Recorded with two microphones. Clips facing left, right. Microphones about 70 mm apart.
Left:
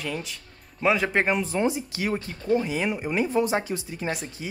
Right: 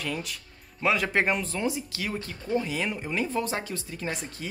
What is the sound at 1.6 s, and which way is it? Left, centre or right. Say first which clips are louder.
A man's voice: left 4 dB; left.